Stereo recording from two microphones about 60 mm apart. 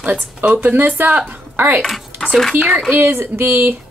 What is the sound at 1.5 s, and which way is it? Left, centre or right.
Speech, right.